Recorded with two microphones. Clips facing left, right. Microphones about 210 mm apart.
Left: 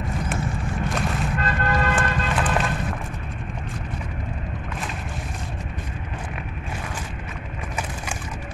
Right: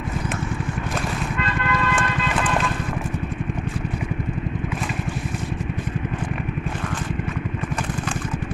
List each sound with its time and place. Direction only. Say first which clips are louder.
1.4 s vehicle: even; 45° left (ahead or behind)